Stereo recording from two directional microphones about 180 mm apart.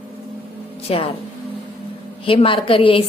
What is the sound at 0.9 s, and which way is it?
Speech, 30° left (ahead or behind).